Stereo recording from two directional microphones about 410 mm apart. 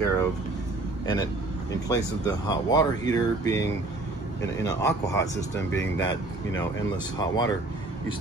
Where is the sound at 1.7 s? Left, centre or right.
Centre.